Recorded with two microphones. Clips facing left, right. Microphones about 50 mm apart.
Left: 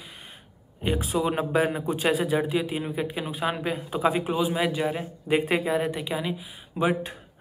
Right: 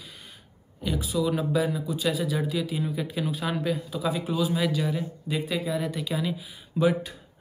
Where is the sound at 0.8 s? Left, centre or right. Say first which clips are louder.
Left 1 dB; left.